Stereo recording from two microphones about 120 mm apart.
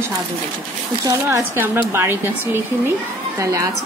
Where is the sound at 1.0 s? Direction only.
20° right (ahead or behind).